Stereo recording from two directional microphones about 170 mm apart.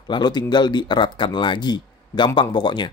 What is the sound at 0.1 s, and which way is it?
Speech, 25° left (ahead or behind).